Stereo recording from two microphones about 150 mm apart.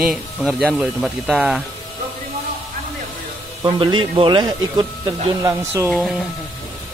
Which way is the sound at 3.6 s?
30° right (ahead or behind).